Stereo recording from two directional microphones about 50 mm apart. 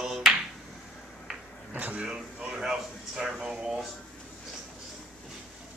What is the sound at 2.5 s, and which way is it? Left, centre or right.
Speech, centre.